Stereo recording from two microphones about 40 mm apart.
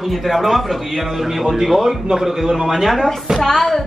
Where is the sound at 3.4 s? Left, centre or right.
Centre.